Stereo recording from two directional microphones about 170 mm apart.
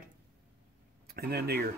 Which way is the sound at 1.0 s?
65° right (ahead or behind).